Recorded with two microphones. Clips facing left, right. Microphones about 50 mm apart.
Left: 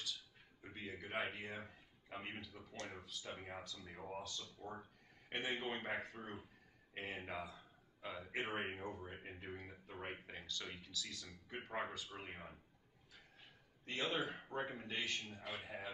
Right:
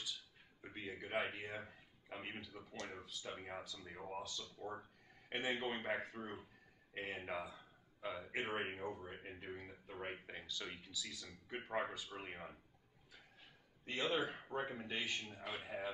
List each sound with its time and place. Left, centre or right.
0.6 s a man's voice: centre
13.8 s speech: centre